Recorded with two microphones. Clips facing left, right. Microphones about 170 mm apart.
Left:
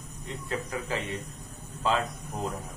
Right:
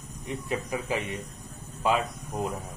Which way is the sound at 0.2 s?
15° right (ahead or behind).